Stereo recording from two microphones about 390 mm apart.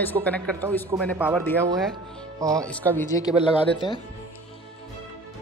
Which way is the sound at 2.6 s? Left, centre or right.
Centre.